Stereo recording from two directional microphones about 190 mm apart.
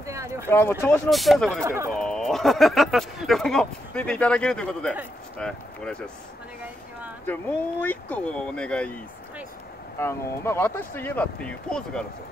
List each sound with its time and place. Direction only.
0.0 s a sound: 15° right (ahead or behind)
0.5 s speech: 10° left (ahead or behind)
1.1 s speech: centre (ahead or behind)
1.6 s speech: 15° right (ahead or behind)
2.0 s speech: 5° left (ahead or behind)
7.2 s speech: 10° left (ahead or behind)